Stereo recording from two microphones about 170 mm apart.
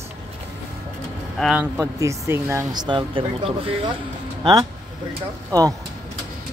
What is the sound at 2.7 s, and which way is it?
Speech, 25° right (ahead or behind).